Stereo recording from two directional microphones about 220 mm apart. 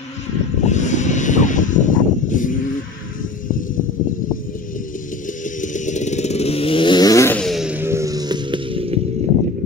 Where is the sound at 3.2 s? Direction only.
40° left (ahead or behind); by 9.3 s 30° right (ahead or behind).